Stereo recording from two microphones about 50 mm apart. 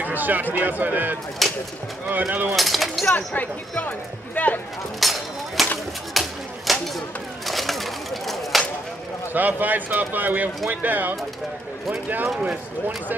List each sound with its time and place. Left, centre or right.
0.0 s speech: right
1.4 s speech: centre
2.0 s speech: right
2.5 s speech: centre
3.2 s speech: left
5.0 s speech: centre
6.2 s a sound: centre
9.3 s speech: right